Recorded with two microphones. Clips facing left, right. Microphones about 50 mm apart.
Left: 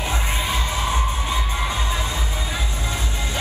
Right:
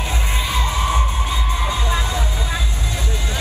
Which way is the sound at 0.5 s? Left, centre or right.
Right.